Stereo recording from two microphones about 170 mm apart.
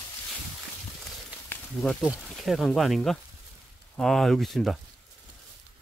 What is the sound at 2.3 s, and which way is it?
Speech, centre (ahead or behind).